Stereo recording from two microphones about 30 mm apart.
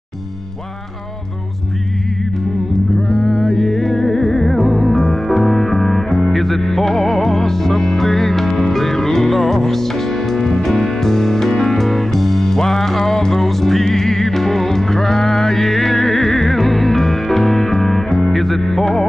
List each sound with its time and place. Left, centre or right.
3.1 s music: centre
13.4 s music: centre